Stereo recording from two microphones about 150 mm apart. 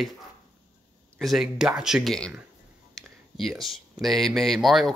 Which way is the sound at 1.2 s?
Centre (ahead or behind).